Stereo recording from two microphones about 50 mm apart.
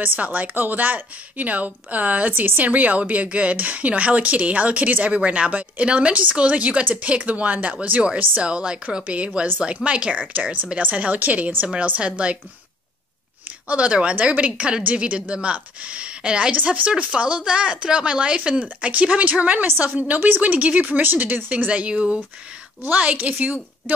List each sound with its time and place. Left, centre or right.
0.0 s speech: right
2.3 s speech: right
13.7 s speech: right
21.6 s speech: right